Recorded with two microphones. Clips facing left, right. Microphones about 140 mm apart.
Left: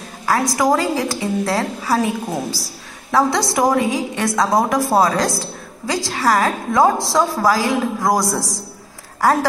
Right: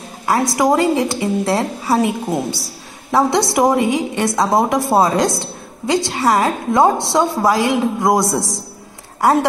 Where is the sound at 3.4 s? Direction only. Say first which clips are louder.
Right 2 dB; 25° right (ahead or behind).